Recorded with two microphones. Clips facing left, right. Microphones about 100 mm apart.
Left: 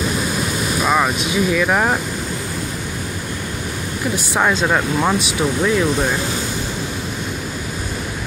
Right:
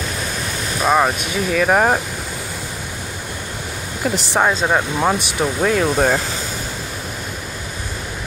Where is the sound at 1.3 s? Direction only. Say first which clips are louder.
Left 1 dB; 45° right (ahead or behind).